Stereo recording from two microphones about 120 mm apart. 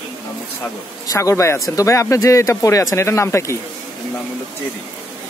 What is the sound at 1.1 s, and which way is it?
Speech, 25° left (ahead or behind).